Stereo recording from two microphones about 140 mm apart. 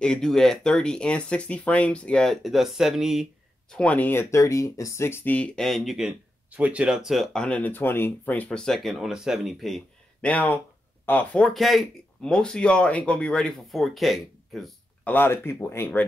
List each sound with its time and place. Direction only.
0.0 s speech: 5° left (ahead or behind)
3.7 s speech: 10° left (ahead or behind)
11.4 s speech: centre (ahead or behind)
15.0 s speech: 15° left (ahead or behind)